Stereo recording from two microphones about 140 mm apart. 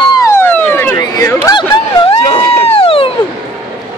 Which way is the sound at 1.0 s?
25° left (ahead or behind).